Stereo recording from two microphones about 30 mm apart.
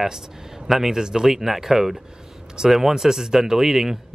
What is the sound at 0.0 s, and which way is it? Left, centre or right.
Speech, centre.